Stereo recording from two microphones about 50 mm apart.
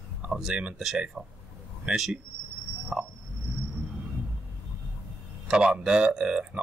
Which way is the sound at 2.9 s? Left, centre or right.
Centre.